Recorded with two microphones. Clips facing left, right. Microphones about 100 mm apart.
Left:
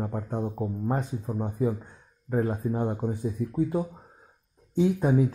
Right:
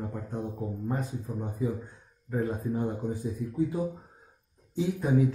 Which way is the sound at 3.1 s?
55° left (ahead or behind).